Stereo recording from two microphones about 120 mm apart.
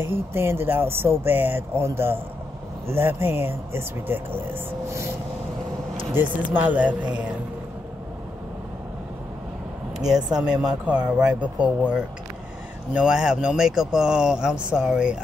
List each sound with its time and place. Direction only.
0.0 s speech: 20° right (ahead or behind)
6.1 s speech: 15° right (ahead or behind)
9.9 s speech: 5° right (ahead or behind)
12.9 s speech: 5° right (ahead or behind)